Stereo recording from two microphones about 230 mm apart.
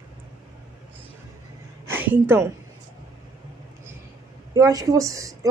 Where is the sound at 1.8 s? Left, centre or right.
Centre.